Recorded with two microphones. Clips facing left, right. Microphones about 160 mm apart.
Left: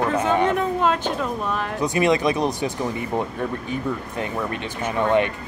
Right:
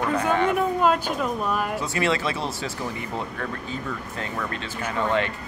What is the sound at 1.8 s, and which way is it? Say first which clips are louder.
Speech: left 5 dB; 15° left (ahead or behind).